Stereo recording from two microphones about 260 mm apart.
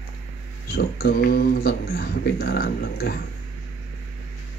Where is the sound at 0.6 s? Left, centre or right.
Left.